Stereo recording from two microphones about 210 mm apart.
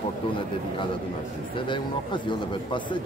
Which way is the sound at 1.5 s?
20° left (ahead or behind).